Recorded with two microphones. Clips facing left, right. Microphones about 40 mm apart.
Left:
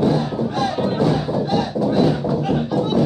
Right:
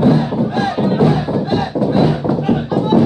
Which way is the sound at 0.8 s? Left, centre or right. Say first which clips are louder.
Right 5 dB; right.